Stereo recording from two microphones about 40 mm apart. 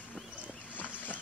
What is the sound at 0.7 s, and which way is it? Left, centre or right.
Vehicle, left.